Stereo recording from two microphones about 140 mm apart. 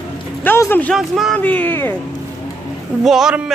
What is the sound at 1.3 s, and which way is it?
Speech, 10° left (ahead or behind).